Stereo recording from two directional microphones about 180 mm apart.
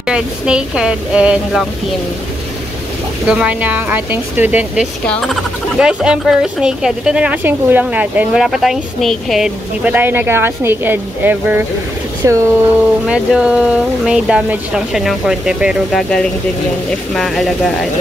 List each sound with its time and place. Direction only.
0.0 s speech: 5° right (ahead or behind)
3.3 s speech: 5° right (ahead or behind)
5.0 s speech: 5° left (ahead or behind); by 12.5 s 15° right (ahead or behind)
13.0 s speech: 5° right (ahead or behind)